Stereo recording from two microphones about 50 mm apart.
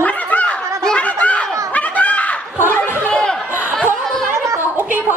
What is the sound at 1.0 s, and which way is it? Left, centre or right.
Snicker, left.